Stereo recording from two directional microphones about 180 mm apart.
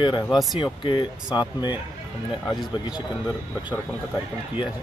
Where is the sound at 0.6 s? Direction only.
25° left (ahead or behind).